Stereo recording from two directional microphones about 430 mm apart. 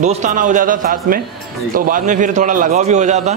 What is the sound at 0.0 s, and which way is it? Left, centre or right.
A man's voice, centre.